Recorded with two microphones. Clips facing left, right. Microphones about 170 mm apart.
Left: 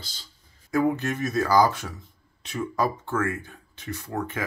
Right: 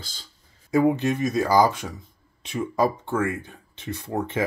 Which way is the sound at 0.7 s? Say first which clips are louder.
Right 4 dB; 20° right (ahead or behind).